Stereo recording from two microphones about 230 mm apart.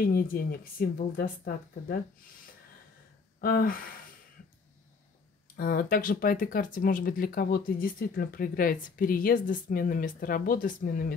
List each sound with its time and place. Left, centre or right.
0.1 s speech: left
3.3 s speech: left
5.6 s speech: left